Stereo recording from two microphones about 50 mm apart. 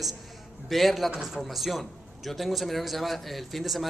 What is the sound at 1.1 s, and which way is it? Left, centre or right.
A man's voice, centre.